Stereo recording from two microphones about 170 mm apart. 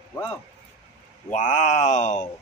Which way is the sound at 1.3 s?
45° left (ahead or behind).